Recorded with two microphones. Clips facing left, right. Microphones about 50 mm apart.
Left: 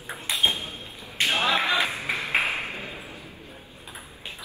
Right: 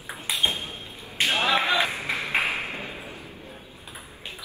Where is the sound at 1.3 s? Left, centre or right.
Right.